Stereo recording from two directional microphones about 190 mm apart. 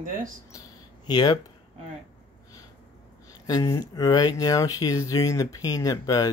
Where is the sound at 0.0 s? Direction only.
45° right (ahead or behind).